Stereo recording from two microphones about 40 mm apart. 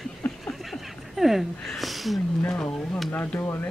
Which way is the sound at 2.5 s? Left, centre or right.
Left.